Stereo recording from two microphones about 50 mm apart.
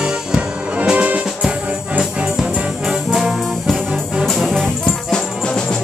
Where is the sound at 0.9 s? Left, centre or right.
Right.